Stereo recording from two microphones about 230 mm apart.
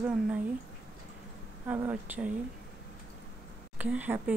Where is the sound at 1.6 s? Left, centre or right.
Centre.